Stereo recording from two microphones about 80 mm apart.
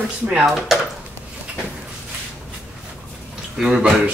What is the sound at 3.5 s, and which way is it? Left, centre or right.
Speech, centre.